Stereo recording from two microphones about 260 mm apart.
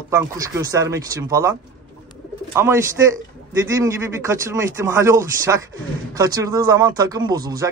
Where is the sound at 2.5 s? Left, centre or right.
Centre.